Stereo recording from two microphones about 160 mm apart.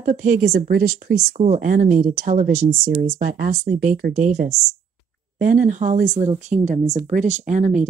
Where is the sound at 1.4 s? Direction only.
55° right (ahead or behind).